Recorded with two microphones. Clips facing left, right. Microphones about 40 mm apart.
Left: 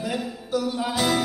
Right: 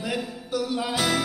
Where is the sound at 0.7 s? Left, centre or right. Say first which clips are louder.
Even; right.